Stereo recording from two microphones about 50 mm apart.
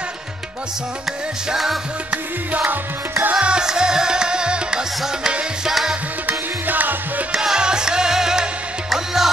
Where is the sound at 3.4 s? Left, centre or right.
Centre.